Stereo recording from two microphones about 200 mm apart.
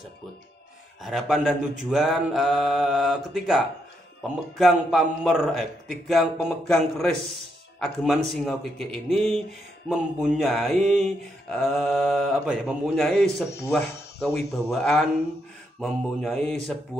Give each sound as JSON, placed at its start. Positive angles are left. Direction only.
{"t": 1.0, "sound": "a man's voice", "side_deg": 0}